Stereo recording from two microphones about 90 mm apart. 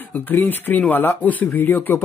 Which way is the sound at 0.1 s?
20° left (ahead or behind).